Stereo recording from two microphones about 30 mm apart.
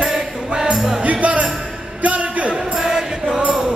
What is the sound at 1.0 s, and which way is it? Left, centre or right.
Music, right.